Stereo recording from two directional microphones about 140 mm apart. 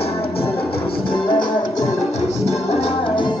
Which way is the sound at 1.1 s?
35° left (ahead or behind).